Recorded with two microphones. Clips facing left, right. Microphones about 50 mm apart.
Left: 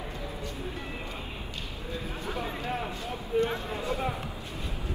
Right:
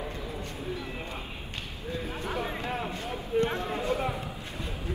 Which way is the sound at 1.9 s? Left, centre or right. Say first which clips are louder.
Right 3 dB; right.